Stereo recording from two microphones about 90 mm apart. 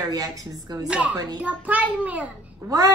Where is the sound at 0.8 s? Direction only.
10° right (ahead or behind).